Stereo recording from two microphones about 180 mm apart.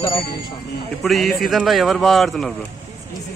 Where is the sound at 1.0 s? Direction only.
Centre (ahead or behind).